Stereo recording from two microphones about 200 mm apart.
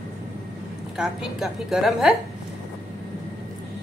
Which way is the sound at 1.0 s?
Centre (ahead or behind).